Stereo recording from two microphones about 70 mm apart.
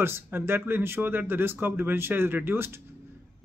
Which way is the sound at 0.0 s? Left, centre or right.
Right.